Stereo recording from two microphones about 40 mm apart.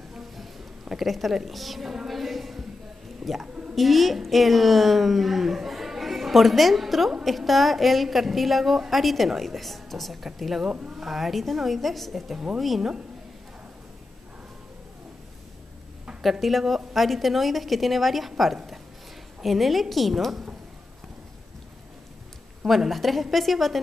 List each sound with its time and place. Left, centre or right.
0.9 s a woman's voice: centre
2.0 s a sound: centre
3.7 s a woman's voice: centre
10.7 s speech: centre
11.0 s a woman's voice: centre
16.2 s a woman's voice: centre
19.4 s a woman's voice: centre
22.7 s a woman's voice: centre